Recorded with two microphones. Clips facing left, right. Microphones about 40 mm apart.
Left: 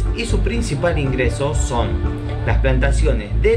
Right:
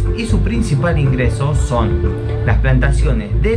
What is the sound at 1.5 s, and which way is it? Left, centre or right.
Speech, centre.